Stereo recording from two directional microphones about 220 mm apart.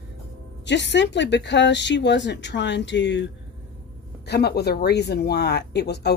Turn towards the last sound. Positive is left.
turn(degrees=50)  # may be behind; listen again after turning